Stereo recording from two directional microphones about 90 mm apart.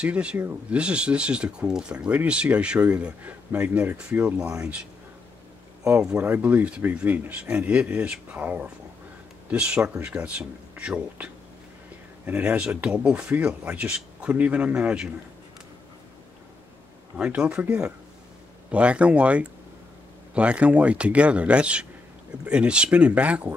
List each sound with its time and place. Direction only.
0.0 s speech: 10° right (ahead or behind)
6.2 s speech: 20° right (ahead or behind)
12.3 s speech: 15° right (ahead or behind)
17.2 s speech: 10° right (ahead or behind)